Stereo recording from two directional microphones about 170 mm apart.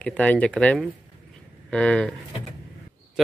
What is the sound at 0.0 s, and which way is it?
Speech, 10° left (ahead or behind).